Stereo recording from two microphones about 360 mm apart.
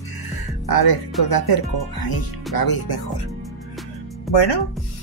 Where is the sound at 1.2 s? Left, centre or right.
Left.